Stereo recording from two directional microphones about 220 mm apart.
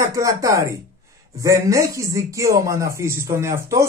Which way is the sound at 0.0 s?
15° right (ahead or behind).